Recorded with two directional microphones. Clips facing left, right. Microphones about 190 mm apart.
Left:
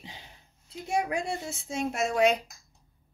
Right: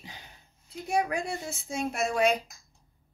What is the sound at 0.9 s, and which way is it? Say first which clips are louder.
Speech: even; 25° left (ahead or behind).